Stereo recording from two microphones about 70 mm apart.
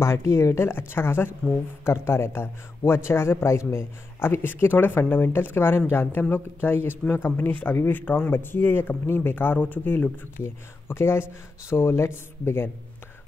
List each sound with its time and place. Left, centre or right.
0.0 s speech: left
10.4 s speech: left